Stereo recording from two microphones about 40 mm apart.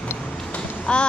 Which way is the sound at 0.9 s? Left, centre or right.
Left.